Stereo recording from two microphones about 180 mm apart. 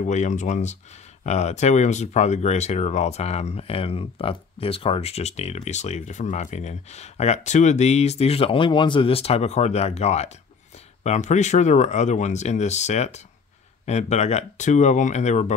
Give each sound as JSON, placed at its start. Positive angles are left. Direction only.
{"t": 0.0, "sound": "speech", "side_deg": 40}